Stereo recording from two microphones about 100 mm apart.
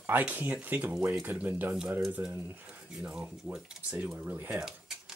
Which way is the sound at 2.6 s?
15° right (ahead or behind).